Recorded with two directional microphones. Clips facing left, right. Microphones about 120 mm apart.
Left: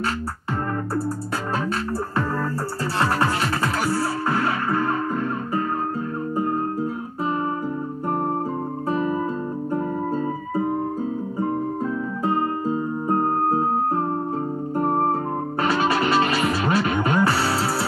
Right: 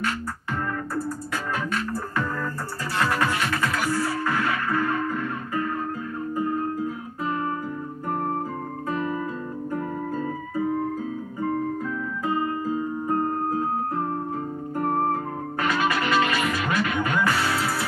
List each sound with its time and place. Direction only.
3.0 s music: 30° left (ahead or behind)
8.8 s music: 30° left (ahead or behind)
12.3 s music: 30° left (ahead or behind)